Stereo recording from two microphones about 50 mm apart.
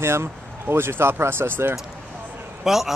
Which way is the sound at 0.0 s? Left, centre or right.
Right.